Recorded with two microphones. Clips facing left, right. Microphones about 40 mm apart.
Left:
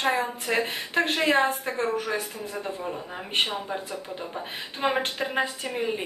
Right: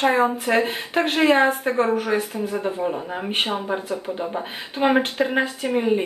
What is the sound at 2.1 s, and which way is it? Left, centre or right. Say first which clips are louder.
Speech: right 7 dB; right.